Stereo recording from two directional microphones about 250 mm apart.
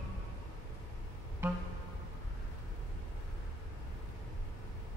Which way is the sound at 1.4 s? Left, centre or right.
Centre.